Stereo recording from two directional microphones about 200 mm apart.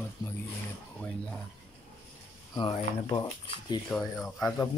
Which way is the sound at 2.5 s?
20° left (ahead or behind).